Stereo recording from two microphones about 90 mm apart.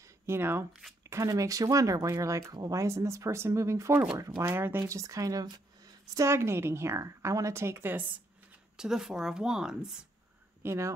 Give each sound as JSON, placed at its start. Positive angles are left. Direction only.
{"t": 0.0, "sound": "shuffling cards", "side_deg": -25}
{"t": 1.0, "sound": "a woman's voice", "side_deg": -35}
{"t": 6.1, "sound": "a woman's voice", "side_deg": -30}
{"t": 8.7, "sound": "a woman's voice", "side_deg": -5}
{"t": 10.6, "sound": "speech", "side_deg": -30}